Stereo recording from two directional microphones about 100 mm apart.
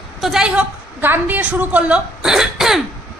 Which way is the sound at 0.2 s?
5° right (ahead or behind).